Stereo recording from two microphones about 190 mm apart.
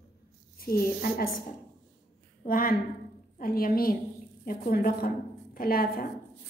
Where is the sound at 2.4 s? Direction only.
50° left (ahead or behind).